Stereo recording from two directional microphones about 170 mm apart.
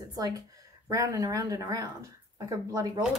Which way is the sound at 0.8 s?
20° right (ahead or behind).